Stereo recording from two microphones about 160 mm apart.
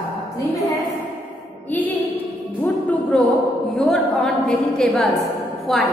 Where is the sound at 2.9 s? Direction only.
5° left (ahead or behind).